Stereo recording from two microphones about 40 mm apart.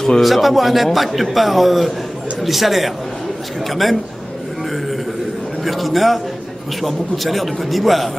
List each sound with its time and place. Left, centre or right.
0.2 s a man's voice: centre
5.6 s a man's voice: centre